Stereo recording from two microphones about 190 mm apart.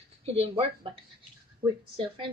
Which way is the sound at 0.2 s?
35° right (ahead or behind).